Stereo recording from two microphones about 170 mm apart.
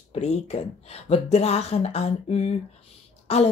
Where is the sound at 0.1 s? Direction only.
35° left (ahead or behind).